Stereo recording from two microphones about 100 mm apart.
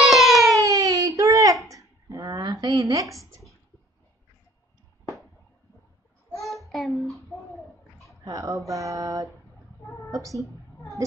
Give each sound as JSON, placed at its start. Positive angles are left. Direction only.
{"t": 0.0, "sound": "siren", "side_deg": 0}
{"t": 0.6, "sound": "a sound", "side_deg": -35}
{"t": 6.4, "sound": "child singing", "side_deg": 0}
{"t": 8.3, "sound": "speech", "side_deg": -35}